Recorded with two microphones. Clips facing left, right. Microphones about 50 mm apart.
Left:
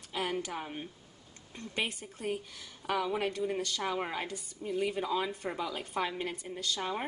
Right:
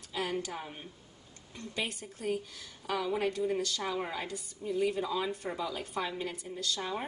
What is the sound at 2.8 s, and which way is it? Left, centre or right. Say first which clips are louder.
Speech: left 2 dB; left.